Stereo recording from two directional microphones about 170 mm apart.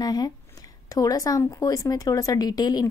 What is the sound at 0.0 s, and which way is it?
Speech, 25° left (ahead or behind).